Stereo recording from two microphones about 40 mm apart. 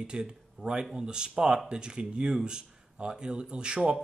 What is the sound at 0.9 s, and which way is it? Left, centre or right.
Speech, right.